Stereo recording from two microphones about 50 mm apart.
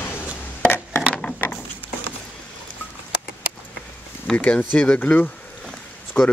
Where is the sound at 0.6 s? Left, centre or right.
Left.